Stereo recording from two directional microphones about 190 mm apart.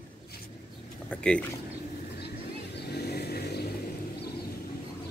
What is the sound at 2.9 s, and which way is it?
Vehicle, 55° left (ahead or behind).